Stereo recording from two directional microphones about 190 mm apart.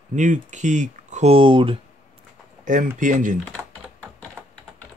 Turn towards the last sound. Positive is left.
turn(degrees=-10)  # may be behind; listen again after turning